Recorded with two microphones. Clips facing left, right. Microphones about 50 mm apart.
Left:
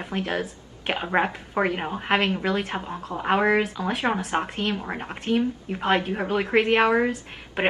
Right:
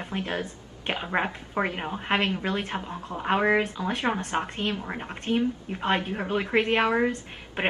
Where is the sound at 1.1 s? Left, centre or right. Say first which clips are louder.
Left 5 dB; centre.